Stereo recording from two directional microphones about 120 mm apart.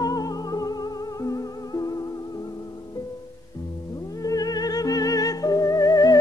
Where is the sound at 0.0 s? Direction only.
35° left (ahead or behind).